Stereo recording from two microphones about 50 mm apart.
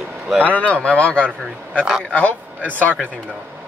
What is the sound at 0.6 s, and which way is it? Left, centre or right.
Speech, left.